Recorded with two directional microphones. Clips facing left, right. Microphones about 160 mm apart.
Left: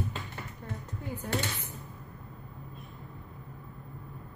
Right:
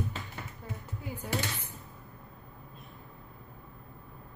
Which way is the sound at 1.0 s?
10° right (ahead or behind).